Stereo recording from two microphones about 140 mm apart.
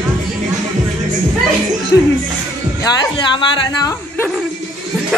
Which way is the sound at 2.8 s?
30° left (ahead or behind).